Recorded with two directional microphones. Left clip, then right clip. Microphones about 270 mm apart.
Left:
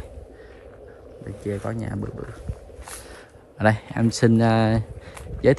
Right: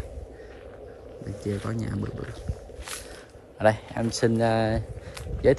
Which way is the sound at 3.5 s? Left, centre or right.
Left.